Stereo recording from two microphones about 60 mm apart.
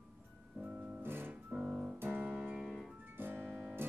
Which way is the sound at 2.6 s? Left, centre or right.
Centre.